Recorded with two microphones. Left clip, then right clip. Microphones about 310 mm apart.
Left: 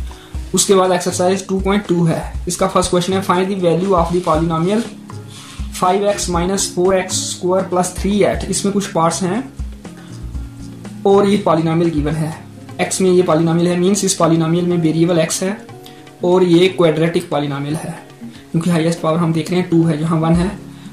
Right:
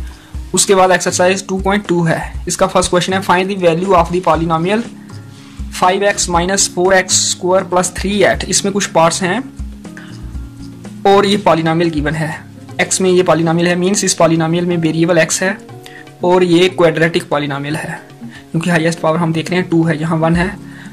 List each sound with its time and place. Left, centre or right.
0.6 s speech: right
5.8 s speech: right
11.1 s speech: right